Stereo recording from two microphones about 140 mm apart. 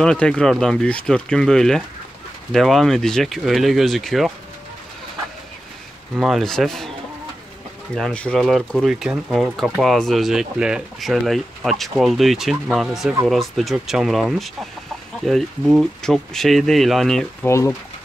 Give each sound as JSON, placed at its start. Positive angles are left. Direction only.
{"t": 0.0, "sound": "speech", "side_deg": 5}
{"t": 6.1, "sound": "speech", "side_deg": 0}
{"t": 7.9, "sound": "speech", "side_deg": 5}
{"t": 17.5, "sound": "speech", "side_deg": 20}